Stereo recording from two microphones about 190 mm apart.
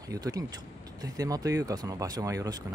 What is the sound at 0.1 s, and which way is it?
Speech, 20° right (ahead or behind).